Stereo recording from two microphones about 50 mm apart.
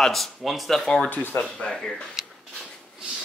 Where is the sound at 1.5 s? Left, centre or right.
Centre.